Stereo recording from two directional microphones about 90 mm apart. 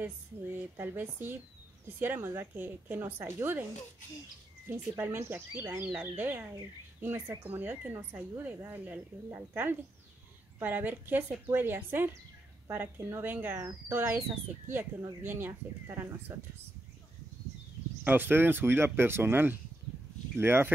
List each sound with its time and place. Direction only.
0.0 s speech: 20° right (ahead or behind)
4.9 s speech: 25° right (ahead or behind)
18.0 s speech: 20° right (ahead or behind)